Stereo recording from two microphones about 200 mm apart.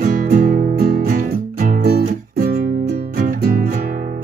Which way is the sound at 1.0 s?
50° right (ahead or behind).